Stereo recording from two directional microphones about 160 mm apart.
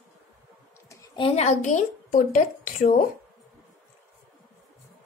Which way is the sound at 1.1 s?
35° left (ahead or behind).